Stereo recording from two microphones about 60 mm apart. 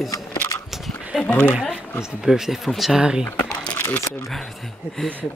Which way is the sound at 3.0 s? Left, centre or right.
Centre.